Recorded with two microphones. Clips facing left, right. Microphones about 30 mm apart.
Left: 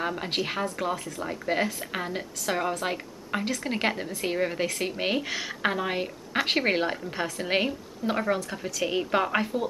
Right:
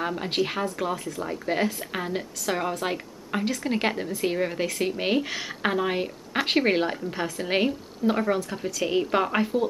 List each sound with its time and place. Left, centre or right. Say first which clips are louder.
0.0 s speech: right 2 dB; centre